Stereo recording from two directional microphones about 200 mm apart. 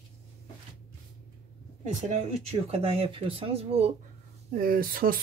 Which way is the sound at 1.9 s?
35° right (ahead or behind).